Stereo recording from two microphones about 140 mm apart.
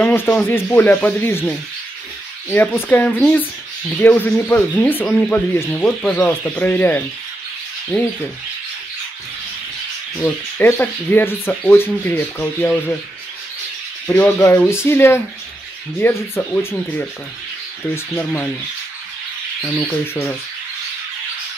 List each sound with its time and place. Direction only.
0.0 s a sound: 15° left (ahead or behind)
0.5 s speech: 15° left (ahead or behind)
2.9 s speech: 10° left (ahead or behind)
10.1 s speech: 15° left (ahead or behind)
14.0 s speech: 15° left (ahead or behind)
19.9 s speech: 10° left (ahead or behind)